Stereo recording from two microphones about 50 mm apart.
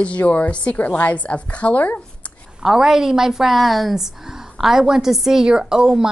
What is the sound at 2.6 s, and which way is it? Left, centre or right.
A woman's voice, centre.